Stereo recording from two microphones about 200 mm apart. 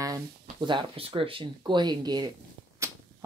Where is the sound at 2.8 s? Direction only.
15° right (ahead or behind).